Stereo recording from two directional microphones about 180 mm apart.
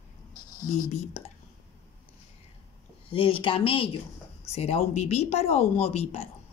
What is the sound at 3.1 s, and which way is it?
Speech, 30° left (ahead or behind).